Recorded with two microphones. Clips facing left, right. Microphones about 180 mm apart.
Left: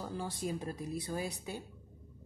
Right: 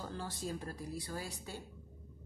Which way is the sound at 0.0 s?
15° left (ahead or behind).